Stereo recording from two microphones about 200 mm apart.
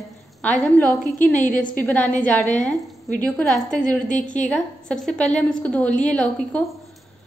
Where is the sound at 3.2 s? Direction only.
5° left (ahead or behind).